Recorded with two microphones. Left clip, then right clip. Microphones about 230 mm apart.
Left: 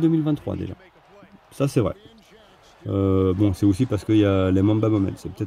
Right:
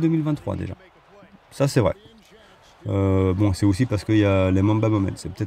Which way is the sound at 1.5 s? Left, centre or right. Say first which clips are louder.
Right 2 dB; centre.